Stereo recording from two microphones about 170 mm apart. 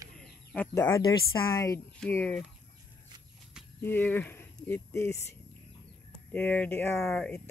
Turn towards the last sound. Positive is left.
turn(degrees=0)  # may be behind; listen again after turning